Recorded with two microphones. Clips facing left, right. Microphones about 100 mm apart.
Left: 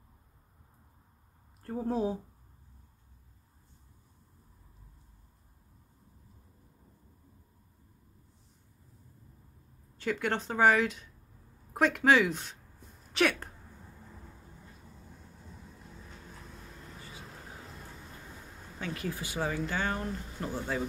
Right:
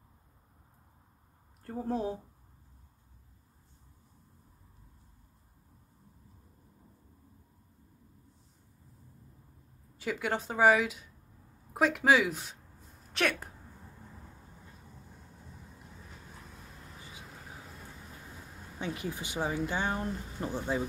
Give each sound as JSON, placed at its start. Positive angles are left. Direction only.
{"t": 1.6, "sound": "speech", "side_deg": 5}
{"t": 9.9, "sound": "speech", "side_deg": -5}
{"t": 18.8, "sound": "speech", "side_deg": -20}
{"t": 20.0, "sound": "speech", "side_deg": -5}
{"t": 20.5, "sound": "speech", "side_deg": -15}